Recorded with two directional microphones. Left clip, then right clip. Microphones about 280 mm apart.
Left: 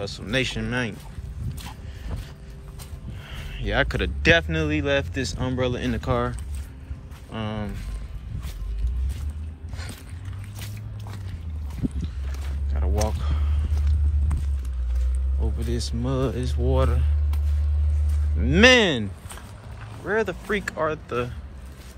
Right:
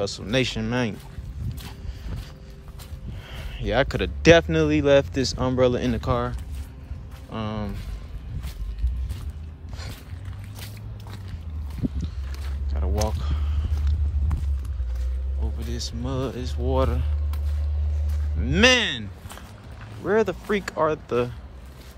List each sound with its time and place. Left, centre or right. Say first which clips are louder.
0.0 s speech: right 2 dB; centre
3.3 s speech: right 2 dB; right
7.3 s speech: even; centre
12.7 s a sound: even; centre
15.7 s speech: left 3 dB; centre
18.4 s speech: left 3 dB; centre
20.1 s speech: right 2 dB; right